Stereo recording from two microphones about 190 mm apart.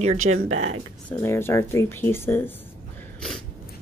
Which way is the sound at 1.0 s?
10° left (ahead or behind).